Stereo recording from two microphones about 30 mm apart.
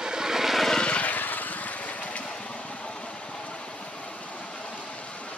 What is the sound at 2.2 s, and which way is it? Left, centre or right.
Vehicle, left.